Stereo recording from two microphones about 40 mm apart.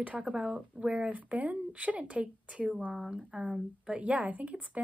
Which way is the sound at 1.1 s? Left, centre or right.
Right.